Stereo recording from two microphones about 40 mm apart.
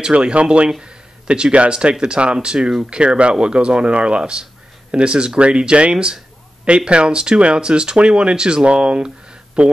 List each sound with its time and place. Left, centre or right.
0.0 s speech: right
0.7 s speech: centre